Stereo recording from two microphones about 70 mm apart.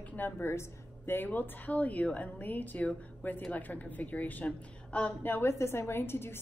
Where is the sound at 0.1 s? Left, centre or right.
Left.